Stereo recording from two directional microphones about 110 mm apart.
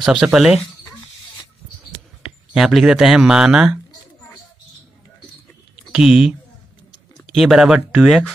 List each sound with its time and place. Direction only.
0.0 s speech: 5° right (ahead or behind)
2.2 s speech: 5° right (ahead or behind)
5.9 s speech: 5° right (ahead or behind)